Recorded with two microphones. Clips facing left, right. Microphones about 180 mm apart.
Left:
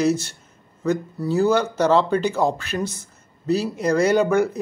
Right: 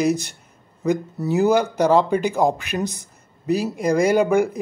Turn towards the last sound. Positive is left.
turn(degrees=-10)  # may be behind; listen again after turning